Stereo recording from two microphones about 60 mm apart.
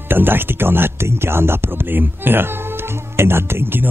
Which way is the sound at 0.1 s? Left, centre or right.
Right.